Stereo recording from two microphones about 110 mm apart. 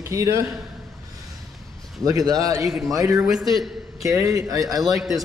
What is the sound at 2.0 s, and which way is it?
Speech, 35° right (ahead or behind).